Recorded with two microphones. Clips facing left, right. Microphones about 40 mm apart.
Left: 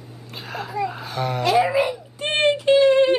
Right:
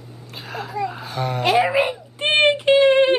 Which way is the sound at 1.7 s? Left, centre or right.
Right.